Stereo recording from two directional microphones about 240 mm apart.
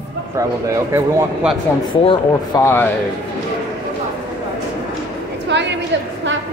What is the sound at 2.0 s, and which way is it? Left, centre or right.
Speech, centre.